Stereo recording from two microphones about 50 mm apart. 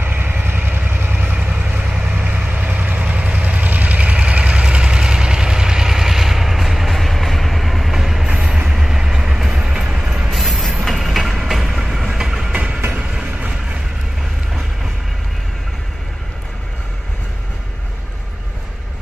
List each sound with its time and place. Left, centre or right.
0.0 s vehicle: right
1.2 s vehicle: right; by 8.3 s centre
8.3 s train: centre
8.7 s vehicle: centre
9.9 s mechanisms: centre
10.3 s train: centre
12.5 s vehicle: right